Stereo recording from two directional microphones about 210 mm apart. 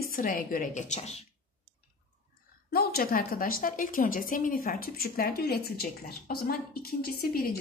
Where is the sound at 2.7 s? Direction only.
45° left (ahead or behind).